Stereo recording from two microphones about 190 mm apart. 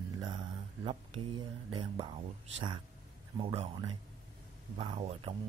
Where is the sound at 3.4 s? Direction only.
25° right (ahead or behind).